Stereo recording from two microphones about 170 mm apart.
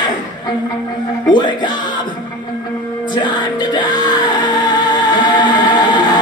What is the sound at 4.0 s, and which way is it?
Music, 25° left (ahead or behind).